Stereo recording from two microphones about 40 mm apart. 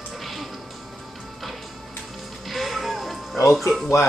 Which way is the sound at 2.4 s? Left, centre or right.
Centre.